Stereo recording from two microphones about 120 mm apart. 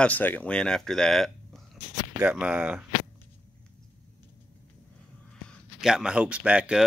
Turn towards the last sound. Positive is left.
turn(degrees=-10)  # may be behind; listen again after turning